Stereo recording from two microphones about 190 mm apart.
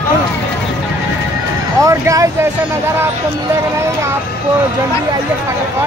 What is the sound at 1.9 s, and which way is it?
Speech, 15° right (ahead or behind).